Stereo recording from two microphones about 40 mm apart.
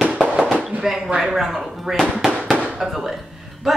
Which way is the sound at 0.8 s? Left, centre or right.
Centre.